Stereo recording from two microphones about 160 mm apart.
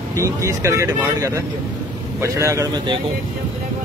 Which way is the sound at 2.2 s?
20° right (ahead or behind).